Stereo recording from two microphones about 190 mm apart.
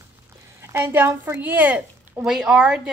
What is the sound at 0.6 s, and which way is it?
A woman's voice, 15° right (ahead or behind).